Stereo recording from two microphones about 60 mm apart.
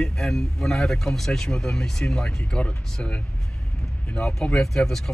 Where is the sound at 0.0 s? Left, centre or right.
Centre.